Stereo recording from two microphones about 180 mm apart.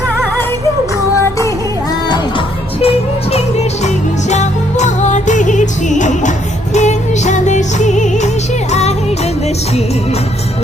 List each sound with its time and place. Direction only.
2.0 s music: 25° left (ahead or behind); by 8.3 s 40° left (ahead or behind)